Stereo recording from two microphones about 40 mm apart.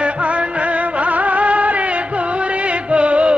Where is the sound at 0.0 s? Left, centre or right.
Right.